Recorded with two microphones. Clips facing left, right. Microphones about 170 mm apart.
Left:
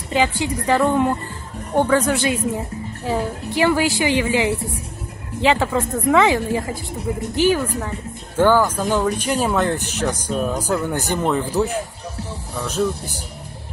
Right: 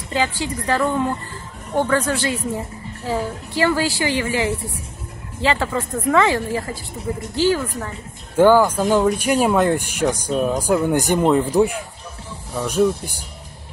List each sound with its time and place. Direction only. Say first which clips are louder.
0.1 s a woman's voice: left 3 dB; 15° left (ahead or behind)
8.4 s speech: right 3 dB; 10° right (ahead or behind)